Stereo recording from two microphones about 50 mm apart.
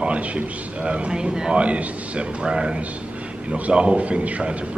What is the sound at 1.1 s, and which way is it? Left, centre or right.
A man's voice, centre.